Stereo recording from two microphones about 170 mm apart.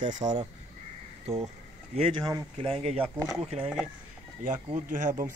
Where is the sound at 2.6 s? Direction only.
35° right (ahead or behind).